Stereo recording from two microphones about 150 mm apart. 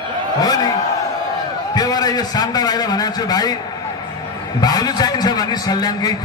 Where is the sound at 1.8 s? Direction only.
25° left (ahead or behind).